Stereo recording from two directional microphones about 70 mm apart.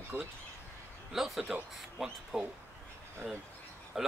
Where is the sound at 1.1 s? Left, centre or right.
Centre.